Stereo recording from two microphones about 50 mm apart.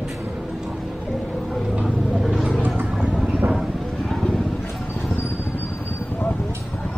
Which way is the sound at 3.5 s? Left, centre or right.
Centre.